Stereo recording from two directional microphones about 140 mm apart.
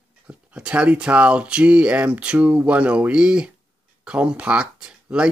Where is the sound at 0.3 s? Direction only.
10° right (ahead or behind).